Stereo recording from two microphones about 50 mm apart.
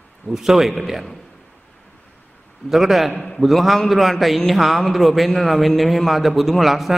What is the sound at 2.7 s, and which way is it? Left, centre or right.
A man's voice, centre.